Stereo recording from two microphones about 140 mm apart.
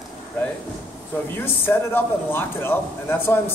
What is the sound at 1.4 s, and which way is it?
Speech, 15° left (ahead or behind).